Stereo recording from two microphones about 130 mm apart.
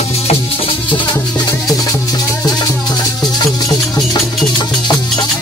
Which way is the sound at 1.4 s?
25° left (ahead or behind).